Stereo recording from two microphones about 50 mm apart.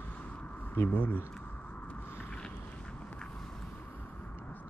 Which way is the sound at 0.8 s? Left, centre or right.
Left.